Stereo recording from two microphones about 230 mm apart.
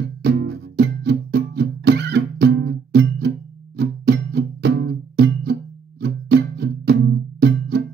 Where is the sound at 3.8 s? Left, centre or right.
Right.